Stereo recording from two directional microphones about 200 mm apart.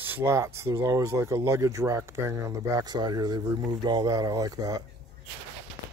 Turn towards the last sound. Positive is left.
turn(degrees=-20)  # may be behind; listen again after turning